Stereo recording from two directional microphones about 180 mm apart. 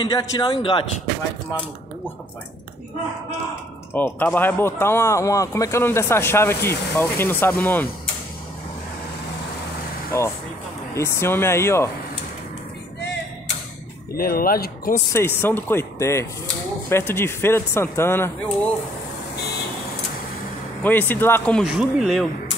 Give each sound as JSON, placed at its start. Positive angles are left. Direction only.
{"t": 0.0, "sound": "a man's voice", "side_deg": 25}
{"t": 3.9, "sound": "speech", "side_deg": 10}
{"t": 10.1, "sound": "speech", "side_deg": 15}
{"t": 14.1, "sound": "speech", "side_deg": 55}
{"t": 15.1, "sound": "speech", "side_deg": 10}
{"t": 20.8, "sound": "speech", "side_deg": 10}